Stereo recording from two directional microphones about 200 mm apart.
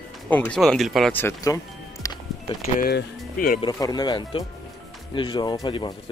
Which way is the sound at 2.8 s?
50° left (ahead or behind).